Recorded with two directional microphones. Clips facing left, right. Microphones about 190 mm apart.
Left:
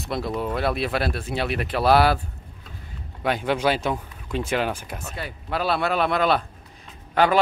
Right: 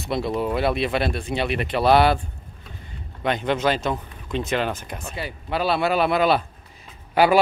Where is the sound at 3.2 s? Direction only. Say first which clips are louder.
Even; 5° left (ahead or behind); by 7.4 s 10° right (ahead or behind).